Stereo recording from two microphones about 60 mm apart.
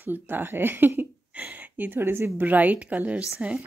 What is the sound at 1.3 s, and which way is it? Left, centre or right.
Speech, right.